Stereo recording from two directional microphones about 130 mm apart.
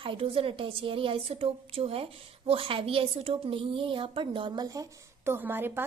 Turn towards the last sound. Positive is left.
turn(degrees=-15)  # may be behind; listen again after turning